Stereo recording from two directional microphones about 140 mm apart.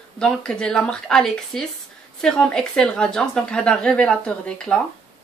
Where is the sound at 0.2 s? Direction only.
5° left (ahead or behind).